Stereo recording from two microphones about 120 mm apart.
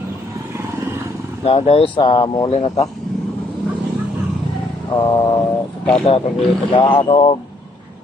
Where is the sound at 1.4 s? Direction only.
60° left (ahead or behind).